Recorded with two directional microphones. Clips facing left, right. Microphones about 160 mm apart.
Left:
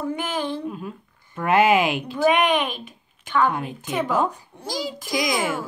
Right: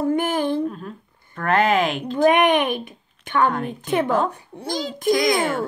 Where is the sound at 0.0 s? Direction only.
55° right (ahead or behind).